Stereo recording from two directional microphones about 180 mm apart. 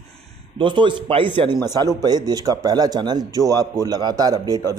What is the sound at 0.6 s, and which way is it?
A man's voice, 25° right (ahead or behind).